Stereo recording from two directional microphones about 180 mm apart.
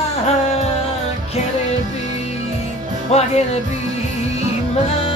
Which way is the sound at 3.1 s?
35° left (ahead or behind).